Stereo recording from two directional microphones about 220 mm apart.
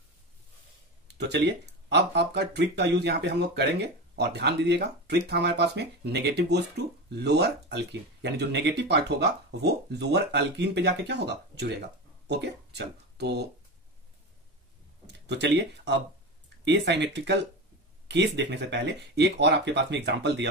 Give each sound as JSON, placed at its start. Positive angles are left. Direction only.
{"t": 1.0, "sound": "speech", "side_deg": -50}
{"t": 15.1, "sound": "speech", "side_deg": -50}